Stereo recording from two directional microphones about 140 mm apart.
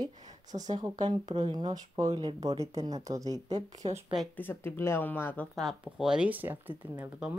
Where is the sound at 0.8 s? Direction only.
30° right (ahead or behind).